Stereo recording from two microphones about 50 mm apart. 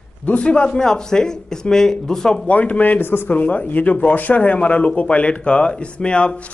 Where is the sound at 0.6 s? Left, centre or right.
Centre.